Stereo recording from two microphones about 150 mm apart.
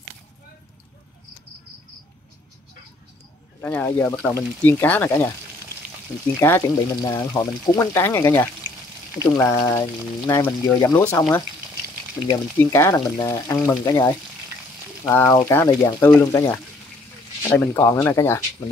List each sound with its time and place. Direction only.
3.6 s speech: 15° left (ahead or behind)
6.4 s speech: 20° left (ahead or behind)
12.5 s speech: 20° left (ahead or behind)
18.6 s speech: 30° left (ahead or behind)